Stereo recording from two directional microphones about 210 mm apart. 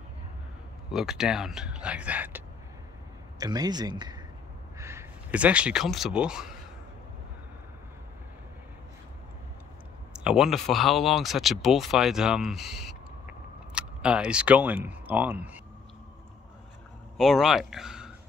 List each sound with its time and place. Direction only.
0.9 s speech: centre (ahead or behind)
3.3 s speech: 20° right (ahead or behind)
10.1 s speech: 5° right (ahead or behind)
17.2 s speech: centre (ahead or behind)